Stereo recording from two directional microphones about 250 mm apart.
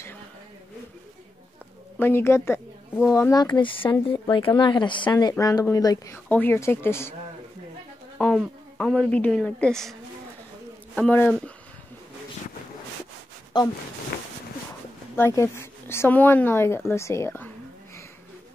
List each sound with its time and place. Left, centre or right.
2.0 s a woman's voice: centre
8.2 s a woman's voice: centre
11.0 s speech: centre
14.1 s a sound: left
15.1 s speech: centre